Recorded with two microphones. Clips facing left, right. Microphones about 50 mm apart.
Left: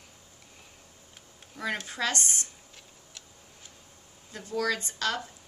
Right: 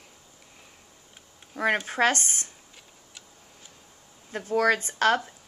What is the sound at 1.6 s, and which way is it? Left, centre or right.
Speech, right.